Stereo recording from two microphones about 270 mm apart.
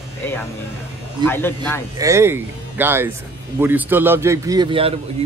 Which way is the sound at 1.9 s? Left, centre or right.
Centre.